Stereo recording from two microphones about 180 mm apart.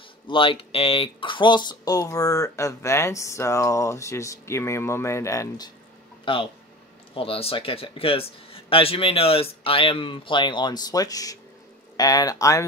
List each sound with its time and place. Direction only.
0.3 s speech: 30° left (ahead or behind)
6.2 s a man's voice: 30° left (ahead or behind)